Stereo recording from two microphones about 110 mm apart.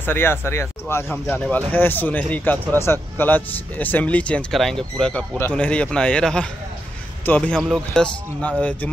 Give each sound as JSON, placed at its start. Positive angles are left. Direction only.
{"t": 0.0, "sound": "speech", "side_deg": 20}